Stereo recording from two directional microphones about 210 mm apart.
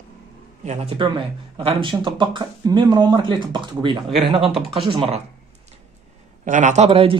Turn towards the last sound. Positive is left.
turn(degrees=-25)  # may be behind; listen again after turning